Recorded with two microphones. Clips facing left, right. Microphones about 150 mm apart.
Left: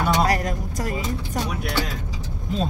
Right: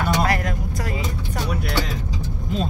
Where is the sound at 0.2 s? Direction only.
35° left (ahead or behind).